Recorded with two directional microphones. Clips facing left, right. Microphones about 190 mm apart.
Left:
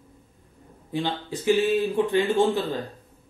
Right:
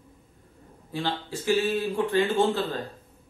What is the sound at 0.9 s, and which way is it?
Speech, 20° left (ahead or behind).